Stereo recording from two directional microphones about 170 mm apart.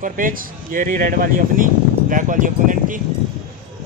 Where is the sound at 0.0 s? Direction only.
55° right (ahead or behind).